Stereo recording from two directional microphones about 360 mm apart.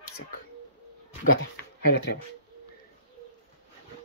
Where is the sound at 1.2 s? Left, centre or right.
Left.